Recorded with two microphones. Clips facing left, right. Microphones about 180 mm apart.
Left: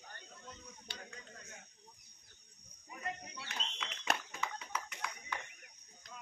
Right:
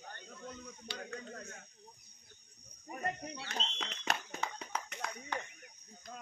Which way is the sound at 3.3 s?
30° right (ahead or behind).